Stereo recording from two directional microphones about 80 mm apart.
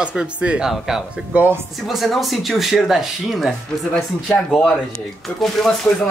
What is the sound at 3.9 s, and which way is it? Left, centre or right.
Speech, centre.